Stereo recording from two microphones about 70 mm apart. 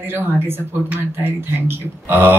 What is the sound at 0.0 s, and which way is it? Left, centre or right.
Speech, right.